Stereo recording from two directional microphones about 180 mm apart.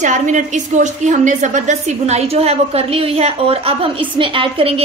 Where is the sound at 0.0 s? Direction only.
40° right (ahead or behind).